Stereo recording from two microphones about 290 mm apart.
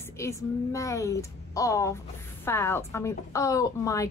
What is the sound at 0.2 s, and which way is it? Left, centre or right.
A woman's voice, centre.